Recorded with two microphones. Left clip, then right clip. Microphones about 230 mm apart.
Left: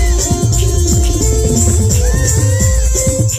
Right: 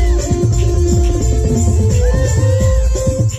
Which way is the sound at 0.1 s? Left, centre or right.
Left.